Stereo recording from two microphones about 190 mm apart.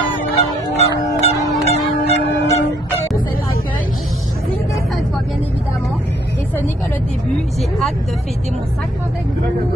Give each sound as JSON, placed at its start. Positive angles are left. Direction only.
{"t": 0.1, "sound": "fowl", "side_deg": 30}